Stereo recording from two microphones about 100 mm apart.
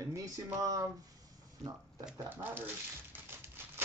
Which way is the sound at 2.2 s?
20° right (ahead or behind).